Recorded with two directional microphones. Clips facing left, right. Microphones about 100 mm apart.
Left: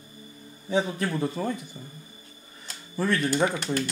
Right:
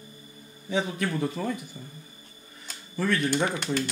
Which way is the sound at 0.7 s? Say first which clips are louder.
Left 2 dB; 30° left (ahead or behind).